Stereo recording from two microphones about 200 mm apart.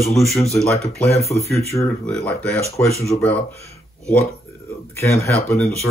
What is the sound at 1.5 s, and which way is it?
Speech, 15° left (ahead or behind).